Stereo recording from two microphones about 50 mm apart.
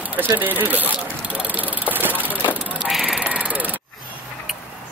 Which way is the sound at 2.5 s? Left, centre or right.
Right.